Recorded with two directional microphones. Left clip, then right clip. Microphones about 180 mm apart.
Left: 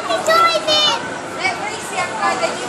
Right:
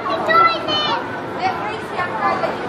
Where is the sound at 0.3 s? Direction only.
45° left (ahead or behind).